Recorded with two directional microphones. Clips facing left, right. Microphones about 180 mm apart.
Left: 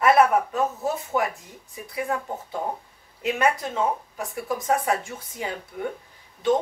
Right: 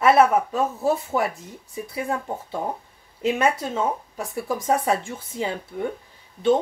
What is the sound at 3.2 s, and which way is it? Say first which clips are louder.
Speech: right 2 dB; 25° right (ahead or behind).